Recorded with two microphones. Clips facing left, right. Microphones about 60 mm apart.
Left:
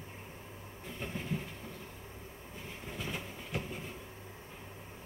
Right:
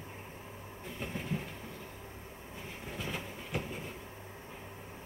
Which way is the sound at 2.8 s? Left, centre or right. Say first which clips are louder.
Right 1 dB; centre.